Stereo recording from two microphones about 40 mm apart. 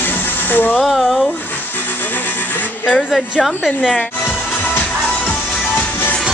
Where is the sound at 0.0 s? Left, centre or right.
Left.